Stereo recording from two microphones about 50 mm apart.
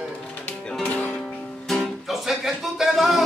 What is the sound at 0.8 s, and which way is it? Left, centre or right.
Music, left.